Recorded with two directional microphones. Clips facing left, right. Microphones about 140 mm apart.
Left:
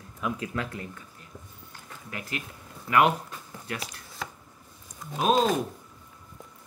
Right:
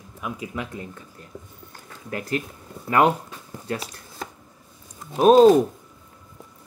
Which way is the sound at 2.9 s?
35° right (ahead or behind).